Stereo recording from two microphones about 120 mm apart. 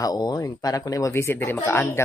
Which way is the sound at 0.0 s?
35° left (ahead or behind).